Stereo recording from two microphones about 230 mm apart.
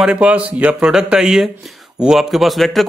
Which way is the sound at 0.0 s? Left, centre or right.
Centre.